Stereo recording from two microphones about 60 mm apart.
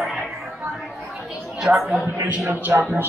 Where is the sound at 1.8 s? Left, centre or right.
Right.